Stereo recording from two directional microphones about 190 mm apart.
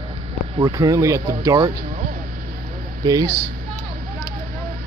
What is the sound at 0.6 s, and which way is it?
Speech, 20° right (ahead or behind).